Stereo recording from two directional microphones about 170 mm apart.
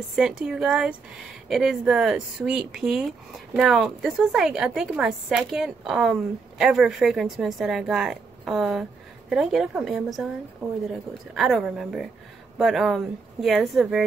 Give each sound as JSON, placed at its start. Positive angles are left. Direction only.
{"t": 0.1, "sound": "a woman's voice", "side_deg": -5}